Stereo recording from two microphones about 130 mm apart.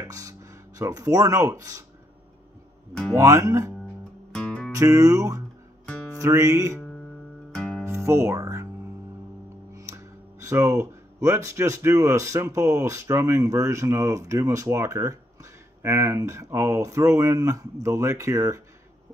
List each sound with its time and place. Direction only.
0.1 s speech: 25° right (ahead or behind)
2.9 s speech: 5° left (ahead or behind)
3.2 s speech: 20° right (ahead or behind)
4.3 s music: 5° left (ahead or behind)
4.7 s speech: 25° right (ahead or behind)
7.5 s music: 5° left (ahead or behind)
7.8 s music: 20° right (ahead or behind)
9.8 s speech: 25° right (ahead or behind)